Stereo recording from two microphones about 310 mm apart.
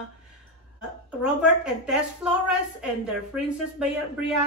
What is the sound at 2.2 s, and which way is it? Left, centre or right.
Speech, centre.